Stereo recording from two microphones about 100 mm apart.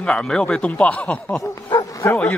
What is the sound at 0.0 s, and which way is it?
Speech, 10° left (ahead or behind).